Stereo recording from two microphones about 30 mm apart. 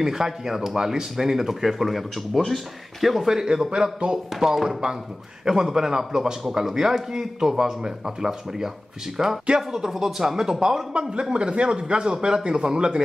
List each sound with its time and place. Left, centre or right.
0.0 s speech: centre
2.3 s speech: centre
3.4 s speech: right
5.5 s speech: centre
10.2 s speech: right
10.9 s speech: right